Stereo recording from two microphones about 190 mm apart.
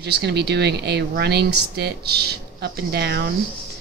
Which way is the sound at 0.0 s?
60° right (ahead or behind).